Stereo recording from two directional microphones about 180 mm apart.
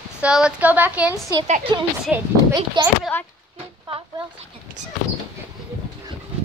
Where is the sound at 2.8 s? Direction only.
25° right (ahead or behind).